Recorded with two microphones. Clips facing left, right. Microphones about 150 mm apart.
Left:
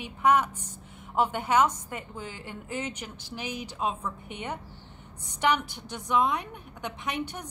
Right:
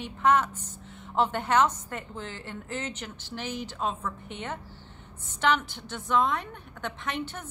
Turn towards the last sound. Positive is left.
turn(degrees=15)  # may be behind; listen again after turning